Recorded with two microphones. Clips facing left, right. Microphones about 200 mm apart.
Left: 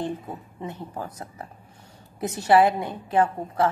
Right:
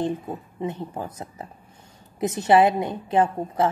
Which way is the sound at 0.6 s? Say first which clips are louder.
Right 4 dB; 20° right (ahead or behind).